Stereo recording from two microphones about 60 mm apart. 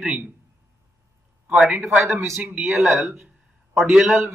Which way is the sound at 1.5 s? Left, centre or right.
Centre.